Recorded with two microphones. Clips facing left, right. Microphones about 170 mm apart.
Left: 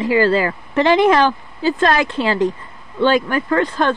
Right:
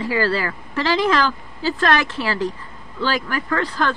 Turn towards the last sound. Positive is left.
turn(degrees=25)  # may be behind; listen again after turning